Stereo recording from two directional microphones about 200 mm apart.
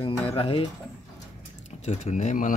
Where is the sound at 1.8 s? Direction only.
35° left (ahead or behind).